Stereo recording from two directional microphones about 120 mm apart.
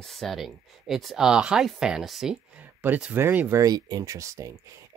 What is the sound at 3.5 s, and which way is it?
Speech, 30° right (ahead or behind).